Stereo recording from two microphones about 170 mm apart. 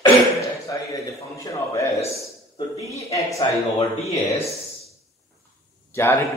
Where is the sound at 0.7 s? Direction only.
20° left (ahead or behind).